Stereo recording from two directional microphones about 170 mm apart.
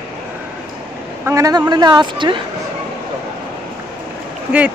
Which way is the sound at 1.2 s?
20° right (ahead or behind).